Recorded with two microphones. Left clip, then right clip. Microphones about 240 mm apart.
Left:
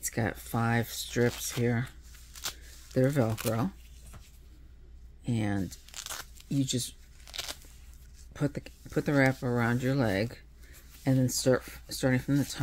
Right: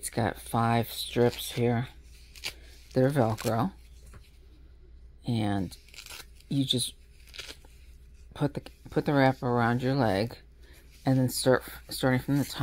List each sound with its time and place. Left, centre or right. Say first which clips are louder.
0.0 s speech: right 3 dB; centre
2.9 s speech: right 2 dB; centre
5.2 s speech: right 2 dB; centre
5.9 s a sound: left 4 dB; centre
6.5 s speech: right 4 dB; centre
6.9 s a sound: even; left
8.3 s speech: right 2 dB; centre